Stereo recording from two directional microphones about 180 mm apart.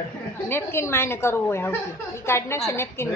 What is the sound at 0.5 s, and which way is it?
Speech, 15° left (ahead or behind).